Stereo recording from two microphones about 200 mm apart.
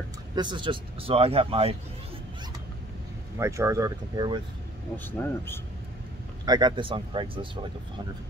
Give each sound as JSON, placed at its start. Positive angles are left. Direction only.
{"t": 0.4, "sound": "a man's voice", "side_deg": -25}
{"t": 3.3, "sound": "speech", "side_deg": -15}
{"t": 4.9, "sound": "speech", "side_deg": 10}
{"t": 6.4, "sound": "a man's voice", "side_deg": -20}